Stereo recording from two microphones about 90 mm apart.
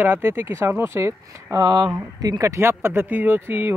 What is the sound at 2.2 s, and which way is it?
Speech, 40° right (ahead or behind).